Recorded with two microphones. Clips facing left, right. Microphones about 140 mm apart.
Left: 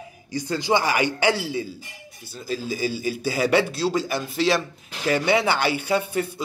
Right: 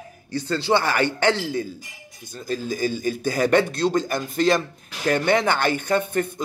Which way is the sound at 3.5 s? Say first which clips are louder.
Right 2 dB; 5° left (ahead or behind).